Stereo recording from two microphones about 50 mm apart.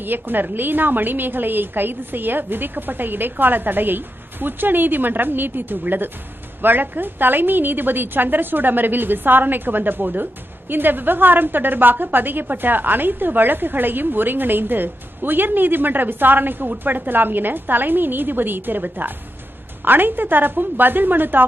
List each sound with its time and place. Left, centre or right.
0.0 s a woman's voice: right